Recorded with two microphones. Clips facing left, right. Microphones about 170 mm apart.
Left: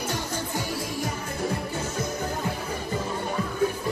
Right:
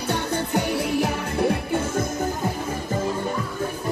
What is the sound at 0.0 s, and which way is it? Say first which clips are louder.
Music: right 5 dB; 65° right (ahead or behind).